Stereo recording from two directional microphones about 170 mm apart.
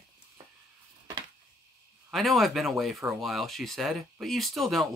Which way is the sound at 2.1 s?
Centre (ahead or behind).